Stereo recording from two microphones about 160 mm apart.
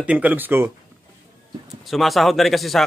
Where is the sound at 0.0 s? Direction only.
10° right (ahead or behind).